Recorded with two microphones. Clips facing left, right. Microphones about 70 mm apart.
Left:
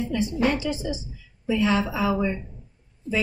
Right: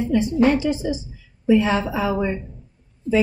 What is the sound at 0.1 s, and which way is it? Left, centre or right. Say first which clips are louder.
A woman's voice: right 7 dB; right.